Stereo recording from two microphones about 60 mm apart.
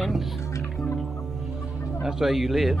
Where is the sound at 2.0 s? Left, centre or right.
Centre.